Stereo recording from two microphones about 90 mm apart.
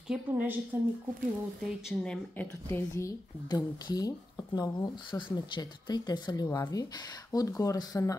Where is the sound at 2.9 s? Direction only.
40° left (ahead or behind).